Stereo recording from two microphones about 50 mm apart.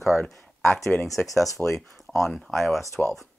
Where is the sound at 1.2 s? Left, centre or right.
Left.